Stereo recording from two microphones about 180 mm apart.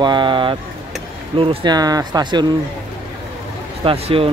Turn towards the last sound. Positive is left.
turn(degrees=-30)  # may be behind; listen again after turning